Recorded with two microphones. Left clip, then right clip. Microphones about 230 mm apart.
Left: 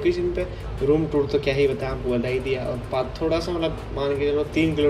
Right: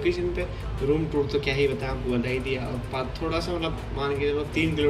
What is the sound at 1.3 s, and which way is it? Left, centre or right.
Speech, centre.